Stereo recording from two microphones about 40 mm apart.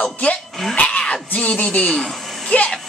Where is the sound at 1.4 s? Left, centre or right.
Left.